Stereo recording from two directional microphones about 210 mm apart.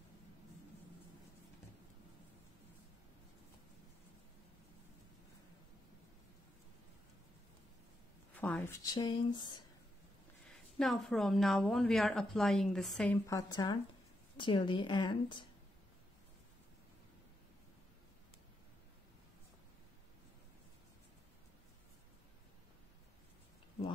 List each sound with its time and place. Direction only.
8.3 s speech: 5° left (ahead or behind)
10.5 s speech: centre (ahead or behind)
13.3 s a woman's voice: 15° left (ahead or behind)